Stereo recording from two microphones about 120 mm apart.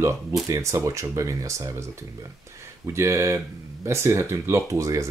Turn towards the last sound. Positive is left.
turn(degrees=-25)  # may be behind; listen again after turning